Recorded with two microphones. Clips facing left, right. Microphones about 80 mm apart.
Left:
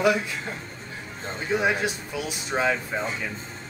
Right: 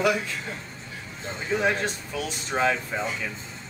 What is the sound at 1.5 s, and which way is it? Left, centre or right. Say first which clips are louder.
Speech: left 1 dB; centre.